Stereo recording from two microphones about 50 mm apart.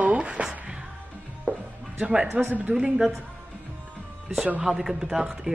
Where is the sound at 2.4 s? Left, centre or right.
Centre.